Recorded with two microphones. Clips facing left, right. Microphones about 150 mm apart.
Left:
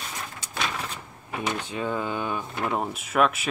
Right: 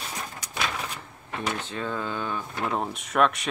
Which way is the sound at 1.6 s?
15° left (ahead or behind).